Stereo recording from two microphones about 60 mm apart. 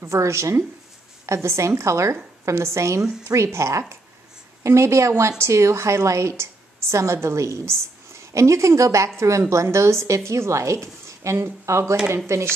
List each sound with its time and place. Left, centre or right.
0.0 s a woman's voice: right